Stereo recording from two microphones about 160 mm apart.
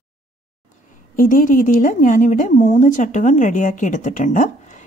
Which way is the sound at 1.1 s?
55° left (ahead or behind).